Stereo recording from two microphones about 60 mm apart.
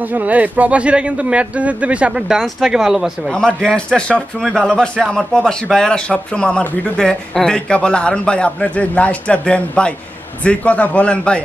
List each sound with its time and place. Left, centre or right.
0.0 s speech: right; by 3.1 s centre
3.3 s a man's voice: centre